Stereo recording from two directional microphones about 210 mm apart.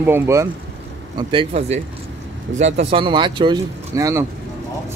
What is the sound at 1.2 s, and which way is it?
Speech, 25° right (ahead or behind).